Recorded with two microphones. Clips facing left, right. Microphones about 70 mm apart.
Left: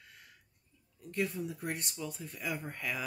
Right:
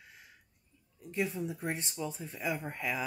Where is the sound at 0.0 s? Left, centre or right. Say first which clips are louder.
Right 1 dB; centre.